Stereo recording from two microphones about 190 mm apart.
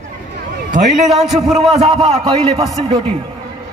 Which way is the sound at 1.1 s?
Centre (ahead or behind).